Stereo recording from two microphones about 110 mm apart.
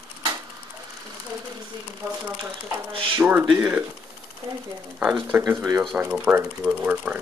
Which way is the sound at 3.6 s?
15° right (ahead or behind).